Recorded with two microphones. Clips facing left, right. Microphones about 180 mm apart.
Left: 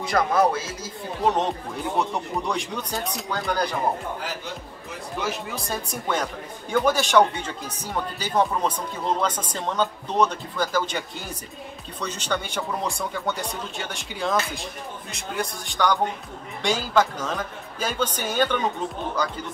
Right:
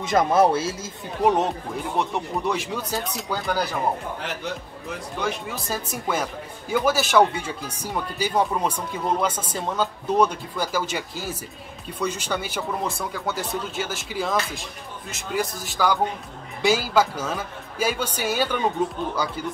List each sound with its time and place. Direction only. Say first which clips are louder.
0.0 s speech: right 2 dB; 25° right (ahead or behind)
1.2 s speech: right 2 dB; 10° right (ahead or behind)
5.2 s speech: right 1 dB; centre (ahead or behind)